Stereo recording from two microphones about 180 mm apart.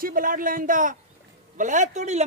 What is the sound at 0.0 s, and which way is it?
Speech, 50° right (ahead or behind).